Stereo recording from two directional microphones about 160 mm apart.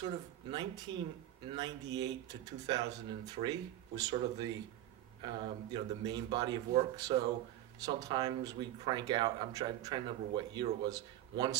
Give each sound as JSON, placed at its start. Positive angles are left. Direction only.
{"t": 0.0, "sound": "speech", "side_deg": -30}